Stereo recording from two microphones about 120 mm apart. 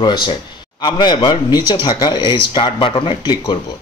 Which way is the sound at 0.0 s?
40° left (ahead or behind).